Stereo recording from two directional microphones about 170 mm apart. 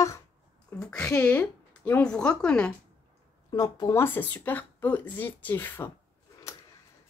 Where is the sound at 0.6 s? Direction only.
5° left (ahead or behind).